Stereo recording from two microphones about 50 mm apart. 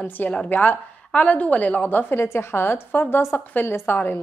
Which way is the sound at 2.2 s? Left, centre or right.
Left.